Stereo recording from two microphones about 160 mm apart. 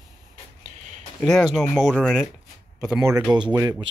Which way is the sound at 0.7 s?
50° right (ahead or behind).